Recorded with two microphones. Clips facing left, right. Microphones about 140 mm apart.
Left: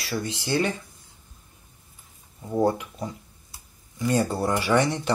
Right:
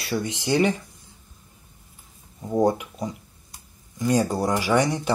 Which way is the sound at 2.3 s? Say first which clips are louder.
Right 2 dB; 15° right (ahead or behind).